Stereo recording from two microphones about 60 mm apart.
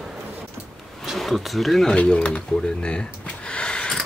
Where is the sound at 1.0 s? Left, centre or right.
Centre.